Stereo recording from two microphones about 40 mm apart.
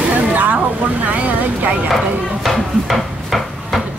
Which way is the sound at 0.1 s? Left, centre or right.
Right.